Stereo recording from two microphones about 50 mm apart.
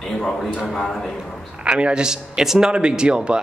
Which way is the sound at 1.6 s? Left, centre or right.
Centre.